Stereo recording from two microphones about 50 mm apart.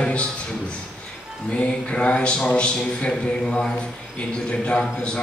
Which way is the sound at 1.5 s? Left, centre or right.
Left.